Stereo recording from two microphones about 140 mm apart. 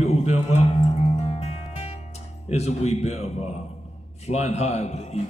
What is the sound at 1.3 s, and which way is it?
Music, 50° left (ahead or behind).